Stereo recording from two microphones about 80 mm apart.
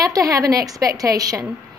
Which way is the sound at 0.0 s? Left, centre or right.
Right.